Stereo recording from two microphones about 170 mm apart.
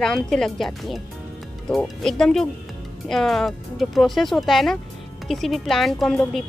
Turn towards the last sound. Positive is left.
turn(degrees=0)  # may be behind; listen again after turning